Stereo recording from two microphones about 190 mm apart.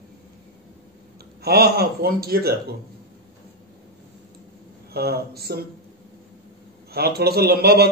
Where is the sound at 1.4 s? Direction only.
55° right (ahead or behind).